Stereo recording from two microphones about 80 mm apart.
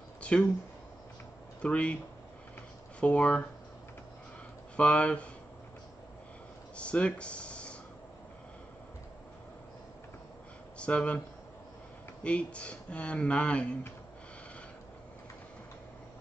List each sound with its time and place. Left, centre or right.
0.2 s a sound: centre
1.6 s speech: centre
3.0 s speech: centre
4.7 s speech: centre
6.8 s speech: centre
10.8 s speech: centre